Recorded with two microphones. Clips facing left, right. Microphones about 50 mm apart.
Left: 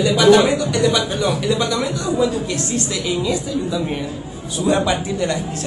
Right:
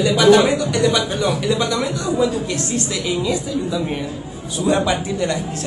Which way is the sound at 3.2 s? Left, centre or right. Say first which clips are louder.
Even; centre.